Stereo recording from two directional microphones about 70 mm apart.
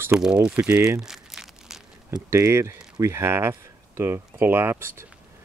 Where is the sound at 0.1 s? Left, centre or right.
Centre.